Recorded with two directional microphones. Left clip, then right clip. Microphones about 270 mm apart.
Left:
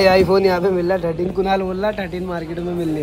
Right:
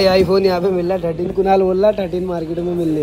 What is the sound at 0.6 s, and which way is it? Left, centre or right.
A man's voice, centre.